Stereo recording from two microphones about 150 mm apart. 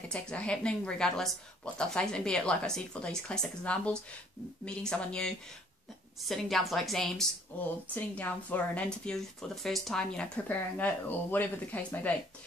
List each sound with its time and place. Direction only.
0.1 s a woman's voice: 5° left (ahead or behind)